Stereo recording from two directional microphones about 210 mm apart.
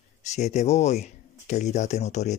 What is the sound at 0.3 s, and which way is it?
Speech, 35° left (ahead or behind).